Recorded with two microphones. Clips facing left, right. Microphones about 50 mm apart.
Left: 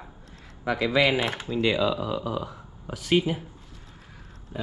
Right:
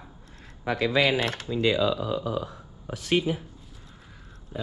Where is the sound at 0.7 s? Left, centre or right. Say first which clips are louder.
Left 1 dB; left.